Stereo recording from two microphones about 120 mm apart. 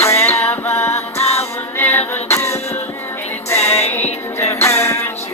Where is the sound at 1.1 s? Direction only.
60° left (ahead or behind).